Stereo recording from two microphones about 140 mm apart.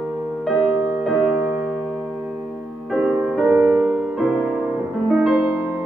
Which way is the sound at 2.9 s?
10° right (ahead or behind).